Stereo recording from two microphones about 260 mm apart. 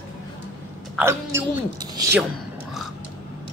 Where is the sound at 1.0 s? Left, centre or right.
Centre.